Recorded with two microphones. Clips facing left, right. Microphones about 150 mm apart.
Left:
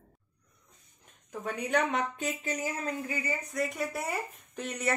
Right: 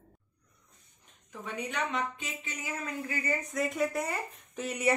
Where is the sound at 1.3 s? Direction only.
45° left (ahead or behind).